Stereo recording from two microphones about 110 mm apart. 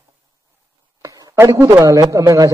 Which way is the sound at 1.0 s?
30° right (ahead or behind).